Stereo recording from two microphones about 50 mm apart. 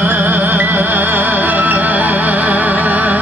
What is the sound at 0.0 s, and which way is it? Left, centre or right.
Music, right.